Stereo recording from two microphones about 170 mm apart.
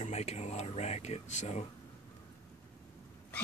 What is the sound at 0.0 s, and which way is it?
Speech, 40° left (ahead or behind).